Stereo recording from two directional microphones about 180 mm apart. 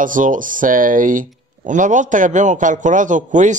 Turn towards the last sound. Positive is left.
turn(degrees=-45)  # may be behind; listen again after turning